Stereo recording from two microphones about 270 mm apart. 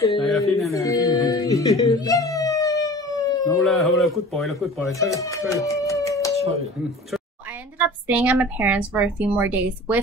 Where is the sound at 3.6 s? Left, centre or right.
Centre.